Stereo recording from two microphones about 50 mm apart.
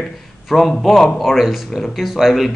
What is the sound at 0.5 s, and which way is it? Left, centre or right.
Speech, centre.